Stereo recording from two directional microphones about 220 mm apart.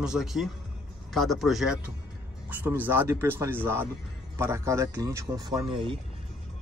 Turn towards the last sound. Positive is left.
turn(degrees=-20)  # may be behind; listen again after turning